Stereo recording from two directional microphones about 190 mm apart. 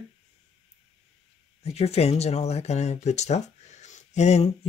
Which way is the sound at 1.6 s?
35° left (ahead or behind).